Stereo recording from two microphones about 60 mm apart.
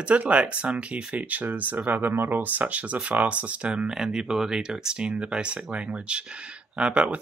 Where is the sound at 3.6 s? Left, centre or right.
Centre.